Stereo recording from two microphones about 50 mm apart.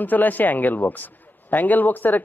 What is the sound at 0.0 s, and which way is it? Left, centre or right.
A man's voice, left.